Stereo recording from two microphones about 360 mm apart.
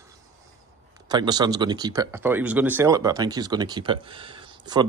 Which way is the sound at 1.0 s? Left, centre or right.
Centre.